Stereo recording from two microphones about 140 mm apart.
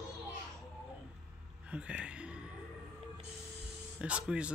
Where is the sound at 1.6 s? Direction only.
10° right (ahead or behind).